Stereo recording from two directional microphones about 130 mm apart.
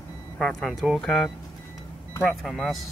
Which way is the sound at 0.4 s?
5° left (ahead or behind).